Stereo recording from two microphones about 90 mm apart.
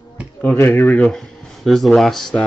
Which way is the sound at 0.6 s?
30° left (ahead or behind).